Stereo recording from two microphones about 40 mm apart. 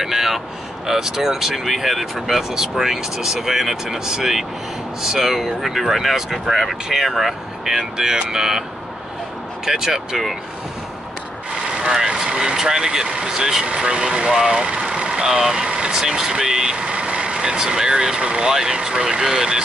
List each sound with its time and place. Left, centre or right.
0.0 s a sound: centre
0.8 s speech: centre
9.7 s speech: centre
11.5 s speech: centre